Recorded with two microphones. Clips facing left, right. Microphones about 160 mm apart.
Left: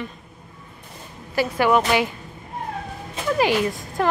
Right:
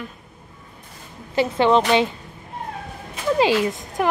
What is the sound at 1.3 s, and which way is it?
Speech, 25° right (ahead or behind).